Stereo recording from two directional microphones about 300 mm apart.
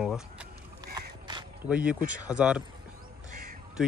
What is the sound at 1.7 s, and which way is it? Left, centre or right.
Speech, centre.